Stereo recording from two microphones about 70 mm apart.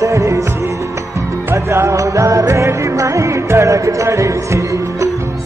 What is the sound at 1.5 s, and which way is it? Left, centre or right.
Music, right.